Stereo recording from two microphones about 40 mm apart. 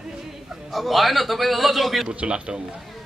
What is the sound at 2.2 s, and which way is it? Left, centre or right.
Speech, right.